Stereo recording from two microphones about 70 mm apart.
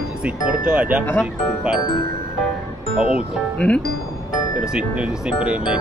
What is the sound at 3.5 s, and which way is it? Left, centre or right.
Speech, centre.